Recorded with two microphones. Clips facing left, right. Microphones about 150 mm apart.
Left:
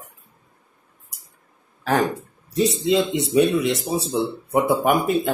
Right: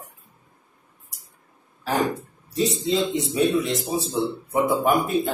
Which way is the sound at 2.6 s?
75° left (ahead or behind).